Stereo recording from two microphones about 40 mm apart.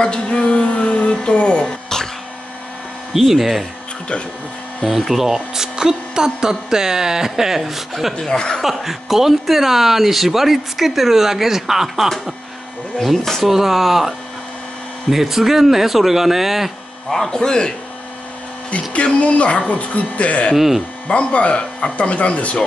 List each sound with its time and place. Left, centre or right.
0.0 s music: left
3.1 s speech: centre
4.9 s speech: centre
8.2 s a man's voice: centre
8.6 s speech: centre
17.3 s a man's voice: centre
19.1 s speech: left
20.5 s speech: centre
21.1 s speech: left